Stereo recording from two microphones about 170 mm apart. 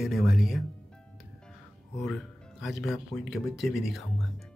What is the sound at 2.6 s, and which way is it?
Speech, centre (ahead or behind).